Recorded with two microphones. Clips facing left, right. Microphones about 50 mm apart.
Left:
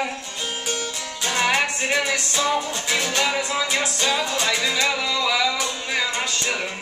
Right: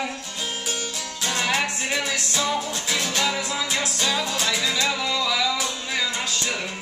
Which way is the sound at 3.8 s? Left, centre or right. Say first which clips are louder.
Left 2 dB; centre.